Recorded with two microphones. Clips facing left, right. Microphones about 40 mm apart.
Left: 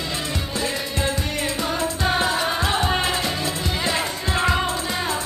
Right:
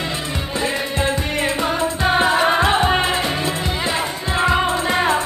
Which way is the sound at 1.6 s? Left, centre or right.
Right.